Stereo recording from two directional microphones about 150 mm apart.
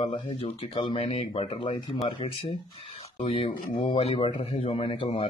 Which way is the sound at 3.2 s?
40° left (ahead or behind).